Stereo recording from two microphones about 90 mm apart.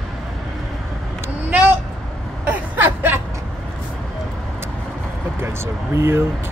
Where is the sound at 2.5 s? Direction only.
20° right (ahead or behind).